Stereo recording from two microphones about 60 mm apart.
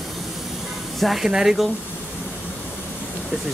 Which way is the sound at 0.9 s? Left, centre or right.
Centre.